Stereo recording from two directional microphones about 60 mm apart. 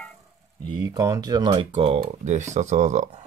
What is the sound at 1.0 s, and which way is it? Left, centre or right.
Speech, right.